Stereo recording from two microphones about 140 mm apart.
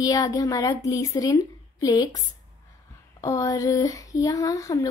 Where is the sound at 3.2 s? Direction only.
25° left (ahead or behind).